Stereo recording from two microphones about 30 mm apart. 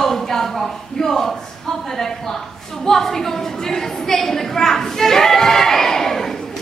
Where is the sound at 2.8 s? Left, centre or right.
Centre.